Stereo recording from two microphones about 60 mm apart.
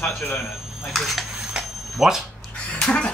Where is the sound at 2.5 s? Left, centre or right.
Centre.